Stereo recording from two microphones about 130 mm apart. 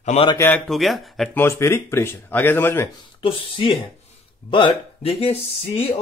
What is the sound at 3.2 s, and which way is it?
A man's voice, 40° left (ahead or behind).